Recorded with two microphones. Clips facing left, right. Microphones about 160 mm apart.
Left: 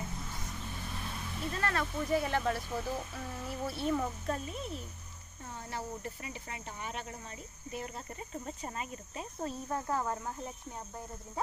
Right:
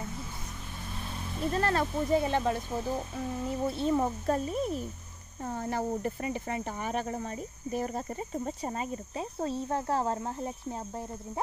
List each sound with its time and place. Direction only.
1.5 s speech: 30° right (ahead or behind)